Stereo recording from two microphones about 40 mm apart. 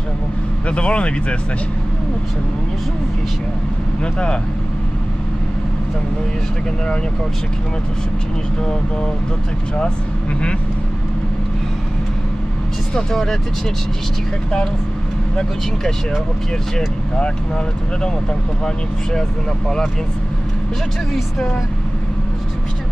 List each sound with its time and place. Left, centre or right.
0.7 s speech: left
4.0 s speech: left
12.9 s speech: centre